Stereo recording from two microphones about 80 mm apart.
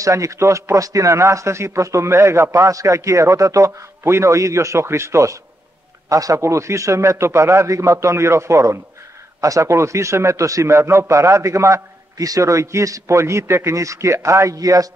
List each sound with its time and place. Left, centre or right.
0.0 s a man's voice: right